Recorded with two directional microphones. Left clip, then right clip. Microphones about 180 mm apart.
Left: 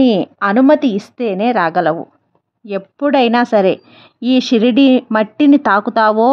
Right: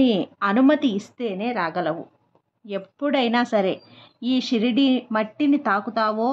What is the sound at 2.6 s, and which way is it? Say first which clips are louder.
Speech: left 9 dB; 35° left (ahead or behind).